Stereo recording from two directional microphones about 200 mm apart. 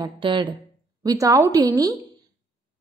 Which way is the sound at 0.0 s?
25° right (ahead or behind).